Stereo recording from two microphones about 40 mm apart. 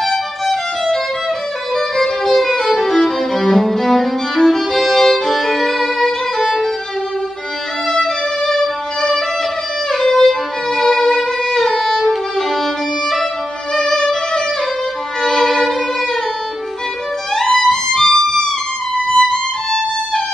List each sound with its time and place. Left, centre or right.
0.0 s violin: centre
2.6 s music: centre
6.3 s violin: centre
8.0 s music: centre
11.6 s violin: centre
13.7 s violin: centre
17.6 s music: centre
19.0 s music: left
19.3 s violin: centre